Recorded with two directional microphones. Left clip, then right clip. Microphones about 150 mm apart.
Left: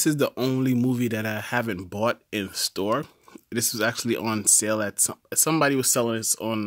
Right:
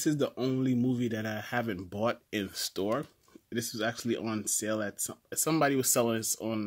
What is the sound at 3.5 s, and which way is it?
Speech, 45° left (ahead or behind).